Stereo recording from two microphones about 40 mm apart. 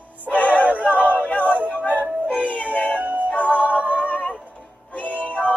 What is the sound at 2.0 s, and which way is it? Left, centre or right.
Music, right.